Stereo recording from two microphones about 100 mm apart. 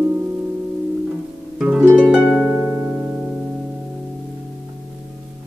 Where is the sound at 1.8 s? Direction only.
20° right (ahead or behind).